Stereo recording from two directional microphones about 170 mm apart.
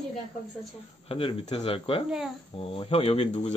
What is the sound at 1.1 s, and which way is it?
Speech, 35° left (ahead or behind).